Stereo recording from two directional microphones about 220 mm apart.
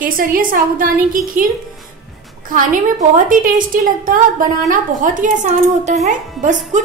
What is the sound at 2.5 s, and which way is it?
Speech, 40° right (ahead or behind).